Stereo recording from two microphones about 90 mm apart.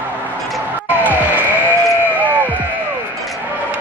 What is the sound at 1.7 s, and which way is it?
Sheep, 20° right (ahead or behind).